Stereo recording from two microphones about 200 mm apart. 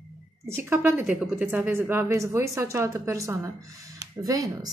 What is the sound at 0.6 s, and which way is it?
A woman's voice, 10° right (ahead or behind).